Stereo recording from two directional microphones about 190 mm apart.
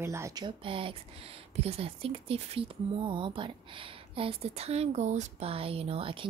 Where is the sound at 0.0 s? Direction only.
15° right (ahead or behind).